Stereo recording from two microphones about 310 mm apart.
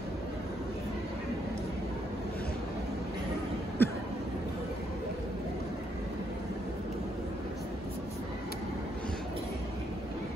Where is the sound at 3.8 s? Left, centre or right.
Centre.